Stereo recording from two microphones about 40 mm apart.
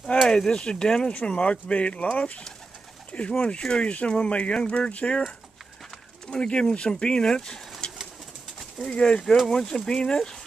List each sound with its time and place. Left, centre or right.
0.1 s a sound: left
0.5 s speech: left
6.3 s speech: left
7.8 s pigeon: left
8.8 s speech: left